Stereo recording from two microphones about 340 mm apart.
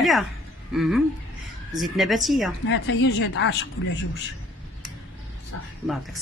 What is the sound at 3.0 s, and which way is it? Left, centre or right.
Speech, left.